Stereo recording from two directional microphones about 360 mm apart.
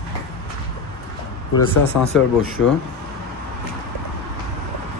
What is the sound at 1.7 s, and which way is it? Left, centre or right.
Speech, left.